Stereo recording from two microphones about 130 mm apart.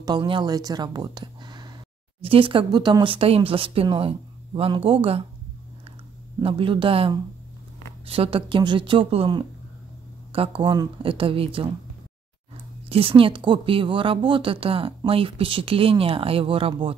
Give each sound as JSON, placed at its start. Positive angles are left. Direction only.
{"t": 0.0, "sound": "speech", "side_deg": -35}
{"t": 6.4, "sound": "speech", "side_deg": -40}
{"t": 12.9, "sound": "speech", "side_deg": -45}